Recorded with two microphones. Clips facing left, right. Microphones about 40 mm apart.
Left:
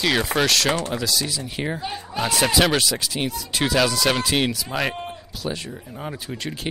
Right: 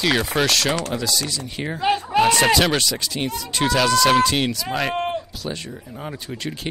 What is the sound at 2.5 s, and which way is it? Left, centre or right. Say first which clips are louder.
Speech: right 1 dB; centre.